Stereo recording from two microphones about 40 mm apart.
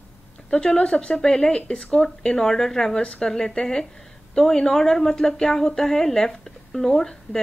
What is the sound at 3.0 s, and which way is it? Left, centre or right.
Speech, left.